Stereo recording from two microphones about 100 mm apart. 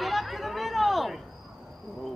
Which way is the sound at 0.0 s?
Centre (ahead or behind).